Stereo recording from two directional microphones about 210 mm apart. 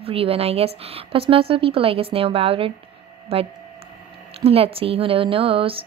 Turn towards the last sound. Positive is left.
turn(degrees=-25)  # may be behind; listen again after turning